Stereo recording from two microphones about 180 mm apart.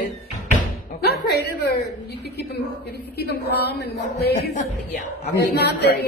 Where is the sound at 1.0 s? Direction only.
65° left (ahead or behind).